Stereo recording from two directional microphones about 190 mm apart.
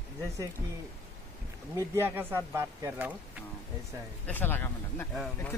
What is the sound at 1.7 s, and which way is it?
Speech, 15° right (ahead or behind).